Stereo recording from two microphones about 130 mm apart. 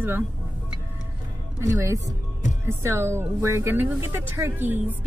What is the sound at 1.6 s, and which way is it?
Speech, 25° right (ahead or behind).